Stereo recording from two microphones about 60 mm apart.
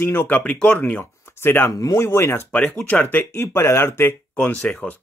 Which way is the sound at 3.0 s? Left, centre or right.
Left.